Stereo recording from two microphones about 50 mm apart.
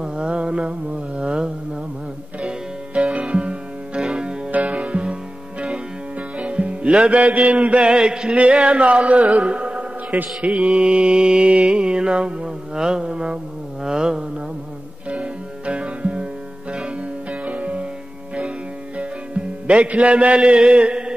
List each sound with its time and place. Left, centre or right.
0.0 s mantra: centre
2.4 s music: right
4.5 s music: right
10.5 s mantra: centre
13.8 s a sound: centre
15.0 s music: right
19.7 s mantra: right